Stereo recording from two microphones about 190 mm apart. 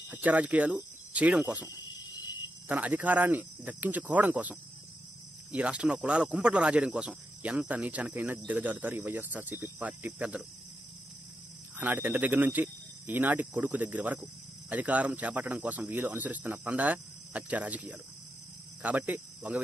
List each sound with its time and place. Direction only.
0.1 s speech: 10° right (ahead or behind)
1.7 s a sound: 20° left (ahead or behind)
2.7 s speech: 10° right (ahead or behind)
11.8 s speech: 10° right (ahead or behind)